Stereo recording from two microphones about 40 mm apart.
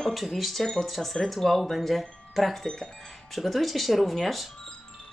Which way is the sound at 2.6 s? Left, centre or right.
Centre.